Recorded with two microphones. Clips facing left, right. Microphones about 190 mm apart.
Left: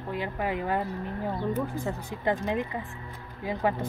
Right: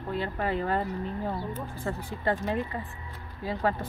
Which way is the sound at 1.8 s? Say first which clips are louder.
Left 1 dB; 15° left (ahead or behind).